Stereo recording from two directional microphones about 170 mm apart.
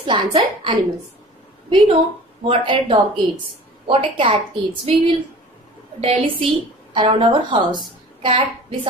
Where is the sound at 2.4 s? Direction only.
30° right (ahead or behind).